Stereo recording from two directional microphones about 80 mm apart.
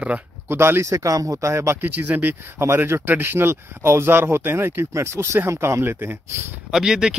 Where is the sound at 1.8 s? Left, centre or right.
Right.